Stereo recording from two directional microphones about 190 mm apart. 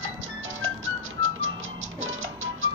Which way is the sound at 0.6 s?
90° right.